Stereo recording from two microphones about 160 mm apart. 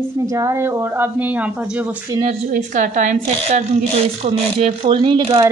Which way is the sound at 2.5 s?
50° right (ahead or behind).